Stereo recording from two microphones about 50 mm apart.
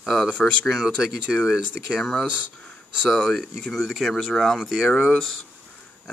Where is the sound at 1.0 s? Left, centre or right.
Centre.